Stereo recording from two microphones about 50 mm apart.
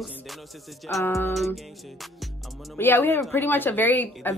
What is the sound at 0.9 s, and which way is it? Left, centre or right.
Speech, left.